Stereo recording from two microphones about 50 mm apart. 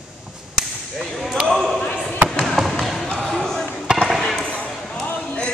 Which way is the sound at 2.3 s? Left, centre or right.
Centre.